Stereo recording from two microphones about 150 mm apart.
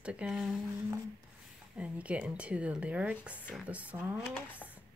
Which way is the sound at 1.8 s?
10° right (ahead or behind).